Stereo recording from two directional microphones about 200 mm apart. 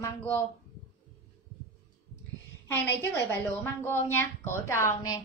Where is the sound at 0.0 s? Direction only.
10° left (ahead or behind).